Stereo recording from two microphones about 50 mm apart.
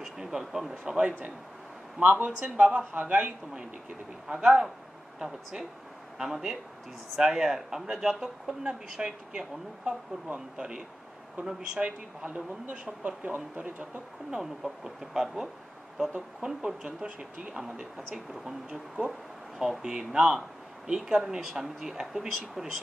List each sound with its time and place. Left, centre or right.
0.0 s speech: centre
2.0 s speech: right
2.8 s a man's voice: right
3.1 s speech: right
5.2 s speech: centre
14.3 s speech: centre